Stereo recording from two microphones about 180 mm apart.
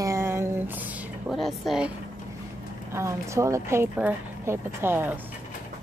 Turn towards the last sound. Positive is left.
turn(degrees=-10)  # may be behind; listen again after turning